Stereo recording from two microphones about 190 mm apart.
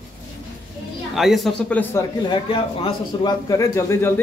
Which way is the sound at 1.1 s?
Centre (ahead or behind).